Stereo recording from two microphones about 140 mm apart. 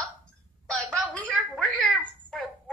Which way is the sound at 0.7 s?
5° left (ahead or behind).